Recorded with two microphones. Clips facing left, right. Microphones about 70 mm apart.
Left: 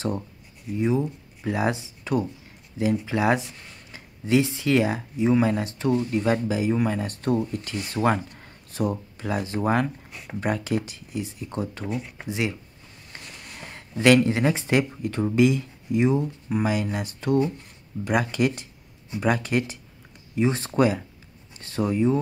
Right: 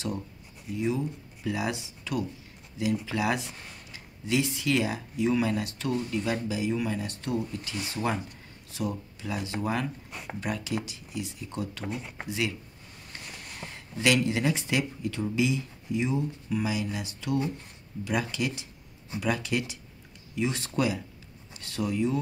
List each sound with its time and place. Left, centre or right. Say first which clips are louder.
0.7 s speech: left 5 dB; left
6.1 s speech: left 6 dB; left
13.1 s a sound: left 1 dB; left
13.7 s speech: left 8 dB; left